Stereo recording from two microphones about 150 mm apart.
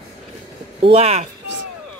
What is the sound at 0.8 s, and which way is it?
Speech, 45° right (ahead or behind).